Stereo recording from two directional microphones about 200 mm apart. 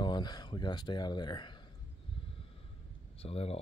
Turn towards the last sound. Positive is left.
turn(degrees=30)  # may be behind; listen again after turning